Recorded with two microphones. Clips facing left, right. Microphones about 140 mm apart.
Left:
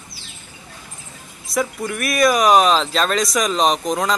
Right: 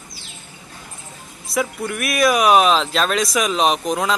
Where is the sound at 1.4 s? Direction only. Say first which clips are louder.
Even; centre (ahead or behind).